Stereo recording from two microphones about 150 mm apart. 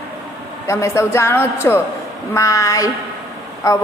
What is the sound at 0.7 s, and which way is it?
A woman's voice, 20° left (ahead or behind).